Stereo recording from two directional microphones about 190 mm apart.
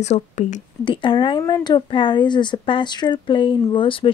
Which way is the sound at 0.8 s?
25° left (ahead or behind).